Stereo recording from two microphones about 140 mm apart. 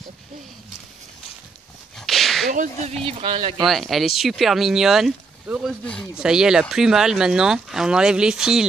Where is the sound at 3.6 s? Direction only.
Centre (ahead or behind).